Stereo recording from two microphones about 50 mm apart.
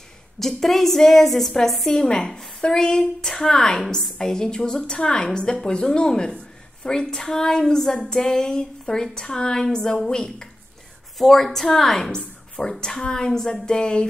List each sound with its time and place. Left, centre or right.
0.4 s a woman's voice: centre
2.0 s a woman's voice: centre